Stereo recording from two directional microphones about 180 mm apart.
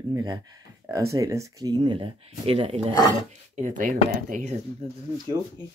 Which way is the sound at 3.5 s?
45° right (ahead or behind).